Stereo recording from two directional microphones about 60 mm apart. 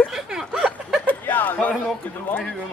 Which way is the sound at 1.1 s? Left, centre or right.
Left.